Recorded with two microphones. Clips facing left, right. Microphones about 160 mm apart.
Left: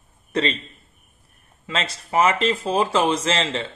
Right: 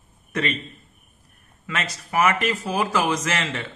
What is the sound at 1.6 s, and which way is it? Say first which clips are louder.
Speech: left 2 dB; 25° left (ahead or behind).